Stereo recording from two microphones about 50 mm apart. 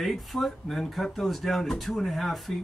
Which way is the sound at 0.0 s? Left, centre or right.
Centre.